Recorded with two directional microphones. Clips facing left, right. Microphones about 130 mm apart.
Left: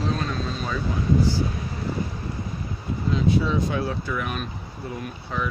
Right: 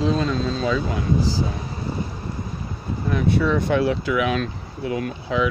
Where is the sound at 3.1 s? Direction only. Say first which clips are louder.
Right 2 dB; 60° right (ahead or behind); by 5.5 s 90° right.